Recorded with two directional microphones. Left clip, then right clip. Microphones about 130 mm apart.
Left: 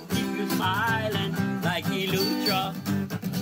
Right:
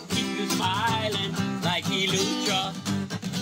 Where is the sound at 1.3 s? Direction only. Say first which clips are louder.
Right 1 dB; 15° left (ahead or behind).